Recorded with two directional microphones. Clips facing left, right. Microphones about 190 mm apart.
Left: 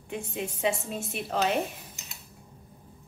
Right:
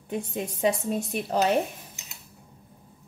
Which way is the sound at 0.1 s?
40° right (ahead or behind).